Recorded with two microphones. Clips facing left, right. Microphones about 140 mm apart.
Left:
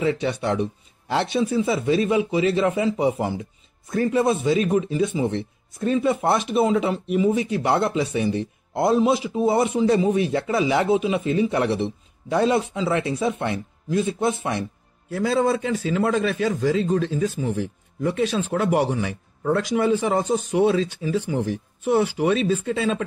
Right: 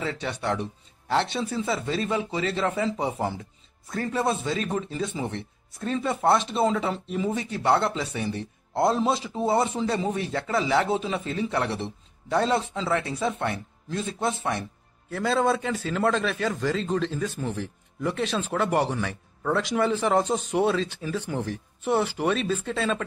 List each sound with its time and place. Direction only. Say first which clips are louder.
0.0 s a man's voice: left 7 dB; 20° left (ahead or behind)
9.5 s a man's voice: left 5 dB; 15° left (ahead or behind)
15.0 s a man's voice: left 3 dB; 5° left (ahead or behind)
19.5 s a man's voice: left 4 dB; centre (ahead or behind)